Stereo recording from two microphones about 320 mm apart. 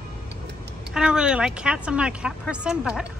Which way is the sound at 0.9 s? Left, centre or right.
Centre.